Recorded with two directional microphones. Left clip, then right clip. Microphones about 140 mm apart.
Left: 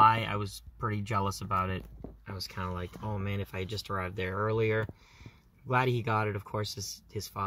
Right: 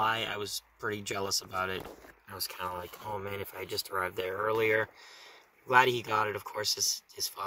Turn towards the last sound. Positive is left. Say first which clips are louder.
# left 1 dB
turn(degrees=-5)  # may be behind; listen again after turning